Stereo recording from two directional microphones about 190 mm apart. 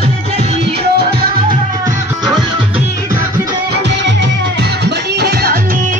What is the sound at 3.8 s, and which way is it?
Music, 70° right (ahead or behind).